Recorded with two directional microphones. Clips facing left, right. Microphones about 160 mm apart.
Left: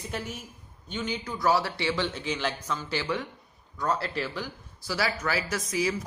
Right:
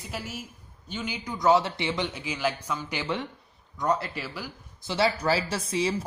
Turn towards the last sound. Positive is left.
turn(degrees=-30)  # may be behind; listen again after turning